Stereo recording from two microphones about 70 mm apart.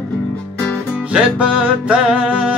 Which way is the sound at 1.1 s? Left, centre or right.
Centre.